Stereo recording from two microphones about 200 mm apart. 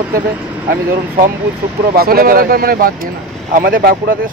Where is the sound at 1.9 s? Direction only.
50° right (ahead or behind).